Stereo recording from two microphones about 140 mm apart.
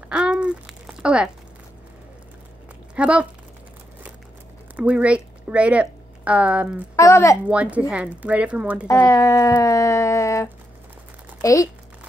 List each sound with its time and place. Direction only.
0.1 s a sound: 5° right (ahead or behind)
3.0 s speech: 10° right (ahead or behind)
4.7 s speech: 10° right (ahead or behind)
7.0 s speech: 20° left (ahead or behind)
7.4 s a woman's voice: 10° right (ahead or behind)
8.8 s speech: 20° left (ahead or behind)